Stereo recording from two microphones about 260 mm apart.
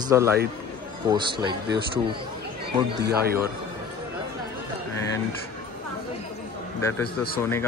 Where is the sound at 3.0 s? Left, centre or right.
Right.